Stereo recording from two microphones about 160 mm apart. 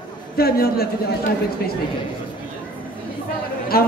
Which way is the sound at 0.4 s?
75° left (ahead or behind).